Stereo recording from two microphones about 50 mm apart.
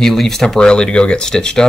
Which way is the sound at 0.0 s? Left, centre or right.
Centre.